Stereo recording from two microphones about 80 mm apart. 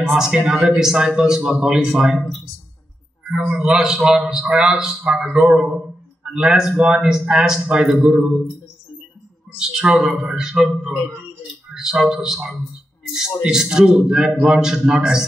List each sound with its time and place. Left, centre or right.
0.1 s a man's voice: centre
3.3 s a man's voice: centre
9.6 s a man's voice: centre